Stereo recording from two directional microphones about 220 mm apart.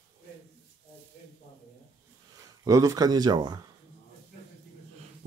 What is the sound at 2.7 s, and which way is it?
Speech, 15° right (ahead or behind).